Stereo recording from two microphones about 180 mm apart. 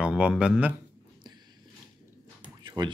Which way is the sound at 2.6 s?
25° right (ahead or behind).